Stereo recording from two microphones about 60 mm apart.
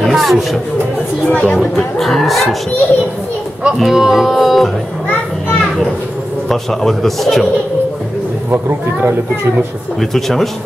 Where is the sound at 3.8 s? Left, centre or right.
Centre.